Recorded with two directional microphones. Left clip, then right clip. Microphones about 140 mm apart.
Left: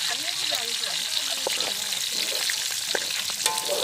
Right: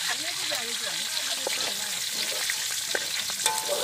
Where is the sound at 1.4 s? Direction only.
30° left (ahead or behind).